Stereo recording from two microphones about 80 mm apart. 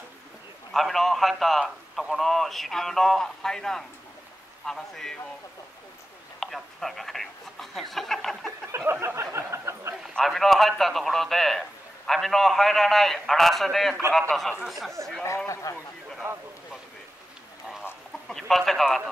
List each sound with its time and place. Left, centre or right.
0.7 s a man's voice: centre
6.4 s a man's voice: centre
9.0 s a sound: right
10.1 s a man's voice: centre
15.2 s speech: left
16.2 s a sound: right
18.3 s speech: centre